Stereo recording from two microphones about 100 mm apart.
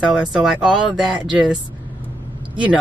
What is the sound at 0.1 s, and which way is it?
Speech, 5° right (ahead or behind).